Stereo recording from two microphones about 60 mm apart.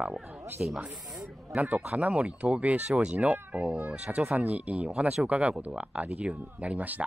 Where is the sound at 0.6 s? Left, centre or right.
Centre.